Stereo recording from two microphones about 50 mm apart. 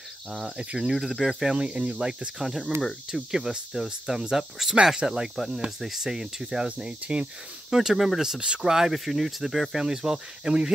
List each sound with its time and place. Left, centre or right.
0.6 s speech: right
0.8 s speech: centre
1.5 s speech: right
2.0 s speech: centre
7.7 s speech: centre